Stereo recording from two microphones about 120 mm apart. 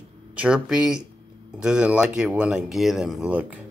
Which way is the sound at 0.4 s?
5° right (ahead or behind).